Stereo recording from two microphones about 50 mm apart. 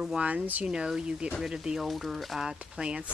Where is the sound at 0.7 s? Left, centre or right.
Centre.